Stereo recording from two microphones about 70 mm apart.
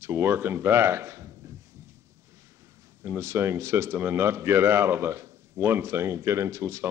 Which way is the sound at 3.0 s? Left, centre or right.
Right.